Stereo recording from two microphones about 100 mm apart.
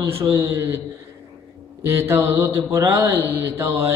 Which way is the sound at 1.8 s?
25° right (ahead or behind).